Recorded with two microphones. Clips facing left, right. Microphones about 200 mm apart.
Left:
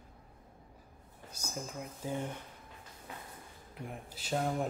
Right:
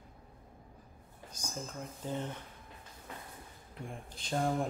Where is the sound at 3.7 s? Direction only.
5° left (ahead or behind).